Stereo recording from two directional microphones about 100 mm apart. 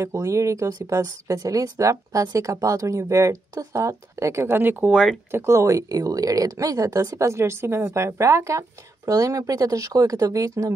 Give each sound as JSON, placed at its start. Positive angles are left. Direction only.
{"t": 0.0, "sound": "speech", "side_deg": -30}